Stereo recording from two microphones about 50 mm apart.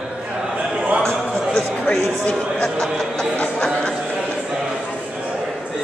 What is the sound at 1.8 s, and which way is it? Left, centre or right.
Speech, centre.